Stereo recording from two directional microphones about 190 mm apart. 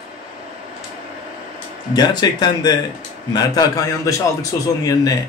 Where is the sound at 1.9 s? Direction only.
20° left (ahead or behind).